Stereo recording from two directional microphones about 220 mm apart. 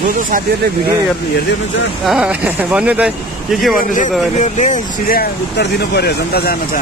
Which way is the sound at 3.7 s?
35° left (ahead or behind).